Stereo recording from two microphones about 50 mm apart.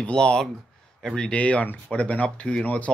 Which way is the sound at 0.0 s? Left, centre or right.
Centre.